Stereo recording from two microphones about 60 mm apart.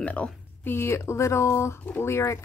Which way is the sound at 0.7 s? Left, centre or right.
Left.